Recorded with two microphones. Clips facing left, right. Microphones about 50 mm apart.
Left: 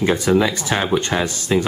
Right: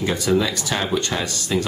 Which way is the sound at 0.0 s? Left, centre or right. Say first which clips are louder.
Left 4 dB; left.